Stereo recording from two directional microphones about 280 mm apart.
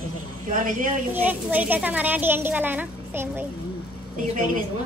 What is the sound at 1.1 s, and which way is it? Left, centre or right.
Speech, centre.